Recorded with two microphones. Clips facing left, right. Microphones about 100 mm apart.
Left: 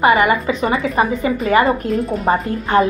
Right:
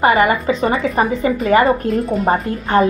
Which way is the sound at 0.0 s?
35° right (ahead or behind).